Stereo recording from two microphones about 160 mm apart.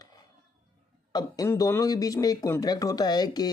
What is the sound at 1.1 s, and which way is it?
A man's voice, 20° left (ahead or behind).